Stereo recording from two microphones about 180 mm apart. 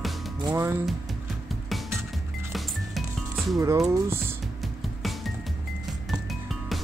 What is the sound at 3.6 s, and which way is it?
Speech, 15° right (ahead or behind).